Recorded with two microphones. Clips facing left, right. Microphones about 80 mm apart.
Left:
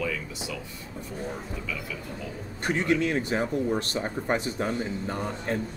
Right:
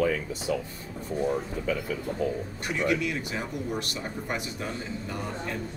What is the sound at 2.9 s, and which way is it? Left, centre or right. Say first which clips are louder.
Speech: left 6 dB; left.